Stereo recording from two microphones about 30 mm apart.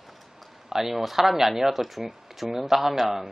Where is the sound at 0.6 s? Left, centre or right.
Centre.